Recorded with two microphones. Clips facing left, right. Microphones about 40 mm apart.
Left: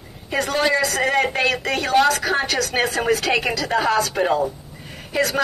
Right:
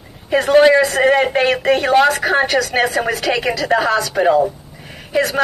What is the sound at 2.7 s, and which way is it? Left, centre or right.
Speech, centre.